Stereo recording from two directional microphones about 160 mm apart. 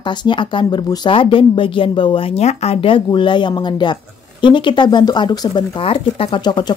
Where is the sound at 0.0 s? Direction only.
30° left (ahead or behind).